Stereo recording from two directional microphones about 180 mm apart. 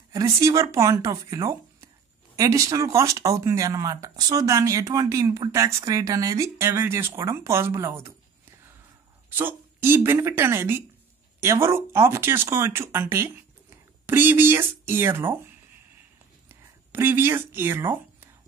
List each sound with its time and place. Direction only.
0.1 s speech: 15° right (ahead or behind)
9.3 s speech: 10° right (ahead or behind)
16.4 s a sound: 10° right (ahead or behind)